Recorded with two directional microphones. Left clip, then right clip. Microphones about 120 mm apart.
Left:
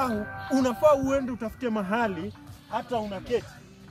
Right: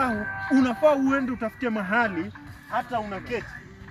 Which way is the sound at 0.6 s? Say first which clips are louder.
Even; 60° left (ahead or behind).